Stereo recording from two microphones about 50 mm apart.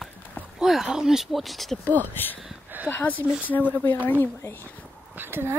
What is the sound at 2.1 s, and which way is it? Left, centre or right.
Speech, left.